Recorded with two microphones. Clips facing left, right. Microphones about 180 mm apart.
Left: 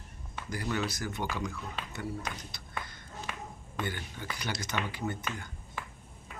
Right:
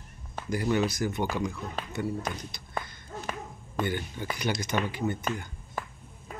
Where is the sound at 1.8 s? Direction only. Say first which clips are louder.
Right 6 dB; 40° right (ahead or behind).